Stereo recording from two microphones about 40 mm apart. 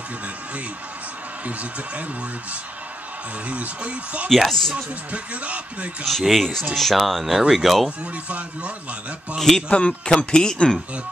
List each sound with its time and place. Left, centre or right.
1.4 s speech: right
3.4 s speech: right
4.5 s speech: centre
4.7 s speech: right
6.0 s speech: centre
8.0 s speech: right
9.4 s speech: centre
9.7 s a man's voice: left